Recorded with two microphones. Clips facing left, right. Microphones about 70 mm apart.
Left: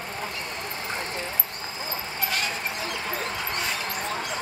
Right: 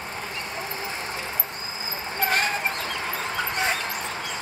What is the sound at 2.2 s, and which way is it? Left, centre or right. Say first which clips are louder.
Dog: right 6 dB; right.